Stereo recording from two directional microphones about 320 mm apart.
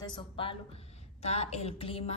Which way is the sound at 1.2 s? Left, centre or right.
Centre.